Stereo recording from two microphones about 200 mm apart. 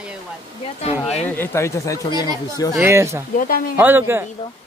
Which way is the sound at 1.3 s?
10° left (ahead or behind).